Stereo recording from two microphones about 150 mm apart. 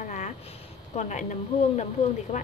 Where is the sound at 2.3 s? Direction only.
45° left (ahead or behind).